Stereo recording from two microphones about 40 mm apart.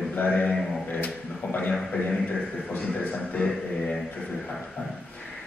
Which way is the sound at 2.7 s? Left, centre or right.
Left.